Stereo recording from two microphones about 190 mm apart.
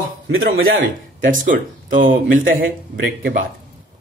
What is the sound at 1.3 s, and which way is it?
Speech, 45° right (ahead or behind).